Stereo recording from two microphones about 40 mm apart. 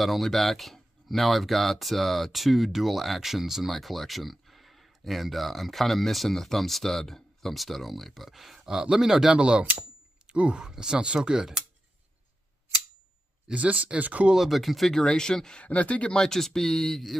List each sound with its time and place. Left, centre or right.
0.0 s speech: centre
9.4 s speech: right
10.6 s speech: centre
13.6 s speech: right
14.3 s speech: centre
15.6 s speech: left
16.1 s speech: centre